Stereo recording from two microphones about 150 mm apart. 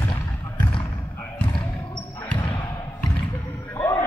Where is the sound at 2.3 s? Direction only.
30° left (ahead or behind).